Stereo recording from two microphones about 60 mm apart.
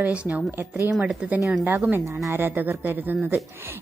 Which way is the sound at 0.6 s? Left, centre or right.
Right.